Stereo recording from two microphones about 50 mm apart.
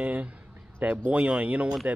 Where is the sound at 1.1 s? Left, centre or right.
Right.